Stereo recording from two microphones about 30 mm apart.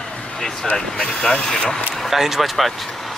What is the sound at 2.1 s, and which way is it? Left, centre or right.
Speech, centre.